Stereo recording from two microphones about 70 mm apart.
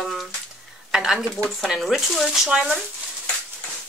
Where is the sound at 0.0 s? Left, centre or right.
Centre.